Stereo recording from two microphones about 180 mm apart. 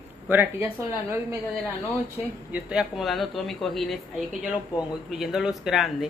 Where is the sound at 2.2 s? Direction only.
5° right (ahead or behind).